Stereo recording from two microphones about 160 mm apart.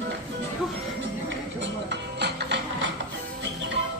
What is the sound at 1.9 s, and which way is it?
Music, 90° right.